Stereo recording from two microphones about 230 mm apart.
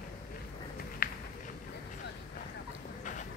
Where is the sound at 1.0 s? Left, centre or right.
Left.